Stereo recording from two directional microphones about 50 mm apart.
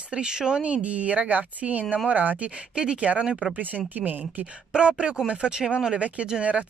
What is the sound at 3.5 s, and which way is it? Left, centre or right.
Speech, right.